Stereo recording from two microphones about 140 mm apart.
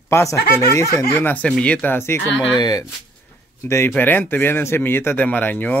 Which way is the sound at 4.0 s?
15° left (ahead or behind).